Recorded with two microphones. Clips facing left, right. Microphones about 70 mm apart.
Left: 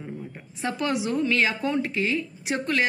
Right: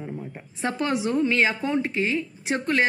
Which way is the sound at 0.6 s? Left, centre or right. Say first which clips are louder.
Right 1 dB; right.